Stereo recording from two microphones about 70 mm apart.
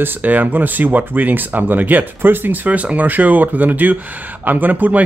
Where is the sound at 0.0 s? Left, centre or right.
Right.